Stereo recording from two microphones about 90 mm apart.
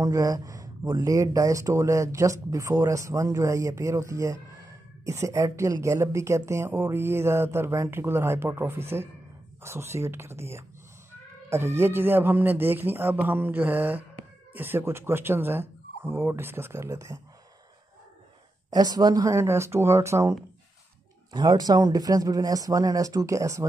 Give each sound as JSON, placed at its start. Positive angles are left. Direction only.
{"t": 0.0, "sound": "a woman's voice", "side_deg": -40}
{"t": 18.7, "sound": "speech", "side_deg": -45}
{"t": 19.3, "sound": "speech", "side_deg": -30}
{"t": 21.3, "sound": "speech", "side_deg": -50}